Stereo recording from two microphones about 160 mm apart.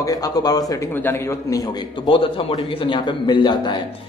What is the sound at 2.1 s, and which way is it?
A man's voice, 35° left (ahead or behind).